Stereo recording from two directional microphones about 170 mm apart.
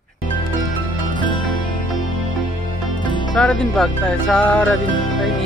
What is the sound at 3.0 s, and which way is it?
Music, 25° left (ahead or behind).